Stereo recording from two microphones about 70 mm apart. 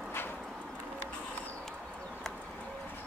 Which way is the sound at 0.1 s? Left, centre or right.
Left.